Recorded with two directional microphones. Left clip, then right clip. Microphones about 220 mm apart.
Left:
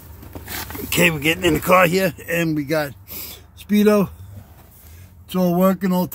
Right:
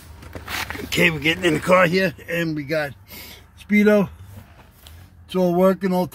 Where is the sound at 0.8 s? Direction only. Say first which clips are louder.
Left 2 dB; 15° left (ahead or behind).